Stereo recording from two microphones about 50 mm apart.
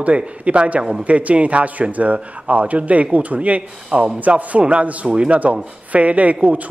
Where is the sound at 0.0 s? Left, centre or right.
Right.